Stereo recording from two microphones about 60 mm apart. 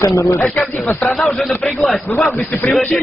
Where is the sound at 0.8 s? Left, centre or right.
Centre.